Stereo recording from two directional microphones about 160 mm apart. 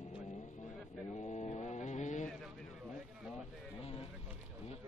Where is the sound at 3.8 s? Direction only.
40° left (ahead or behind).